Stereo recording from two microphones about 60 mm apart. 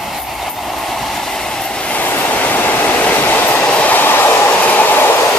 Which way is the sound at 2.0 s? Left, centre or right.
Left.